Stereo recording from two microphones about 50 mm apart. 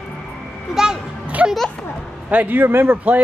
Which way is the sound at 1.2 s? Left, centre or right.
Right.